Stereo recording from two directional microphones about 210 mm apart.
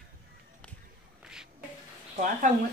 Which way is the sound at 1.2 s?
5° right (ahead or behind).